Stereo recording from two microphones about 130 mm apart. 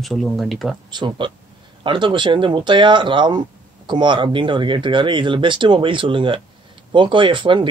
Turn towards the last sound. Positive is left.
turn(degrees=-40)  # may be behind; listen again after turning